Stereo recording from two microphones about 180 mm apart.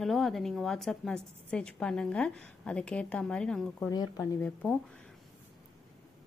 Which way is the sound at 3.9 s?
20° left (ahead or behind).